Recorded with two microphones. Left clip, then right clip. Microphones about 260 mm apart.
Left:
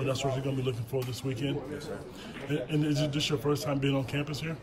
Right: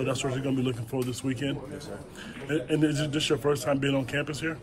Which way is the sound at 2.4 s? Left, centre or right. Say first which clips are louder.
Right 5 dB; left.